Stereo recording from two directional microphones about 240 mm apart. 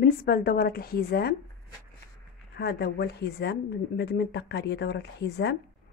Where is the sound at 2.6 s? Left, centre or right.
Left.